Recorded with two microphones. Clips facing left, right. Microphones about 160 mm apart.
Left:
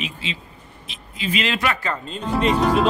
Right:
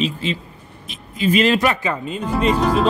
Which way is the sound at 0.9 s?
45° right (ahead or behind).